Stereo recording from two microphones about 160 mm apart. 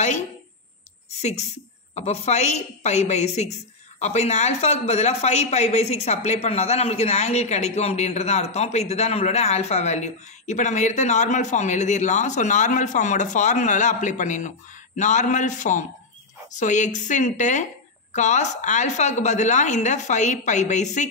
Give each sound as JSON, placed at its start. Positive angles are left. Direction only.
{"t": 2.0, "sound": "speech", "side_deg": 45}